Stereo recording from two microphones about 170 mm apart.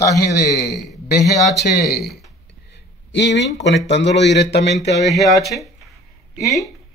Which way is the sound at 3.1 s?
90° left.